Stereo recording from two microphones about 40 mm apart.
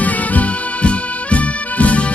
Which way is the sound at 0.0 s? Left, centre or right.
Left.